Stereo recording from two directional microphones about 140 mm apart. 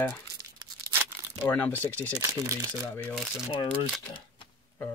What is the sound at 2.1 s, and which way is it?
Speech, 25° right (ahead or behind).